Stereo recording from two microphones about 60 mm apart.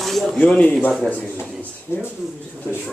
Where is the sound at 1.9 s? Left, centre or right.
Left.